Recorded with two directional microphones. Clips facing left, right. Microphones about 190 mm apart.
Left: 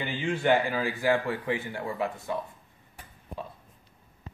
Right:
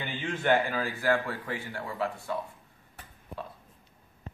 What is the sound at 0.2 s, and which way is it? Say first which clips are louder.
A man's voice: left 2 dB; 10° left (ahead or behind).